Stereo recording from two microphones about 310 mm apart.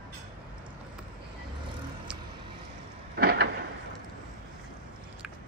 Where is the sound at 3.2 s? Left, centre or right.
Right.